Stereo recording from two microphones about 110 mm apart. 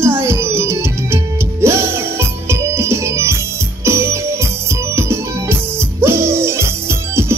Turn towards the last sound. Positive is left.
turn(degrees=-25)  # may be behind; listen again after turning